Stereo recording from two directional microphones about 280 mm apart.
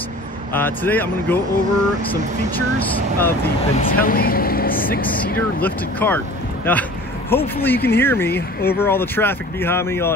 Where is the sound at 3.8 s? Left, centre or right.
Left.